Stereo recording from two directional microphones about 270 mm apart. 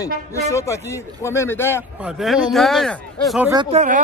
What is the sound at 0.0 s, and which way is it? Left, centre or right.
Speech, centre.